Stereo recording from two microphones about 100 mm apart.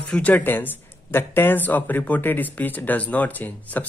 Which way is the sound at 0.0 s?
10° left (ahead or behind).